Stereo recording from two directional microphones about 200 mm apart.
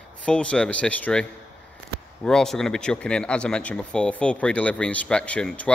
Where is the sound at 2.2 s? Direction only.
Centre (ahead or behind).